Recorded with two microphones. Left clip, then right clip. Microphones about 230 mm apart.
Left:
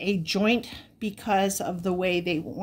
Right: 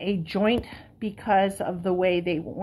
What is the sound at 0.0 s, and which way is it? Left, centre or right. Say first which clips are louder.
A woman's voice: even; left.